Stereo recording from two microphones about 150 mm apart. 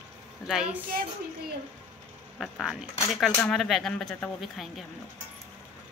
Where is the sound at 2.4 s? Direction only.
Centre (ahead or behind).